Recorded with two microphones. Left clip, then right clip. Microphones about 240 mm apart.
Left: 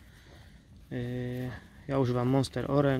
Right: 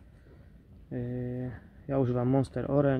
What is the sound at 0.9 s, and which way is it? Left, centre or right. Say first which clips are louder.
Speech: even; centre.